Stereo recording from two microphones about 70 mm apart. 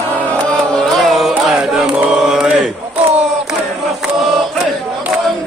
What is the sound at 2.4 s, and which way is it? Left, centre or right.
Chant, centre.